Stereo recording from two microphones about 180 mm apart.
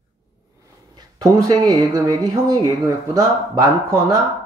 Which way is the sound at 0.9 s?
20° right (ahead or behind).